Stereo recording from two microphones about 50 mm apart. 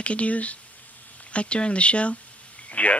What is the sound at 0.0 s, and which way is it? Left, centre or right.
Speech, left.